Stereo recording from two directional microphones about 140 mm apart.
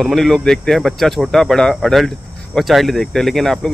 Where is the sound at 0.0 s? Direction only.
Centre (ahead or behind).